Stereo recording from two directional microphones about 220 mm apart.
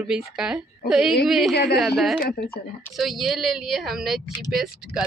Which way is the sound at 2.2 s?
45° left (ahead or behind).